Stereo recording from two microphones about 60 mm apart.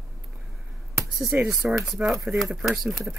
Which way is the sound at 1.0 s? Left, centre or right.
Centre.